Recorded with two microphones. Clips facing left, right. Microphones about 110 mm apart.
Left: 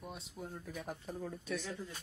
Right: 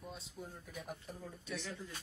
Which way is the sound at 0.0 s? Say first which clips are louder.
Left 2 dB; 20° left (ahead or behind).